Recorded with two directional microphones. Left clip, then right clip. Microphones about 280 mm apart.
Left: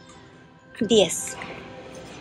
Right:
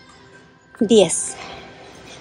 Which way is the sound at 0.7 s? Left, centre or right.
Centre.